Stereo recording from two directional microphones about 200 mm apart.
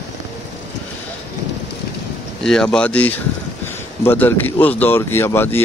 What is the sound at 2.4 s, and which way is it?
Speech, 5° left (ahead or behind).